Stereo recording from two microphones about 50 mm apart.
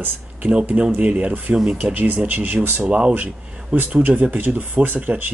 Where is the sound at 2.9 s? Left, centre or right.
Right.